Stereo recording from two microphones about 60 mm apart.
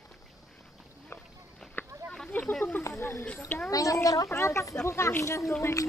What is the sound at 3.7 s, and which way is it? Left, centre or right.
Speech, left.